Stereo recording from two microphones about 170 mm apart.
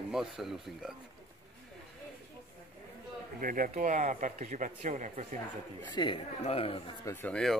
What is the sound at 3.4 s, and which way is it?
Speech, 55° right (ahead or behind).